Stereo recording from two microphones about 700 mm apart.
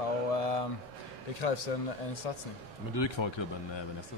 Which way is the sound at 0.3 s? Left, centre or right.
Left.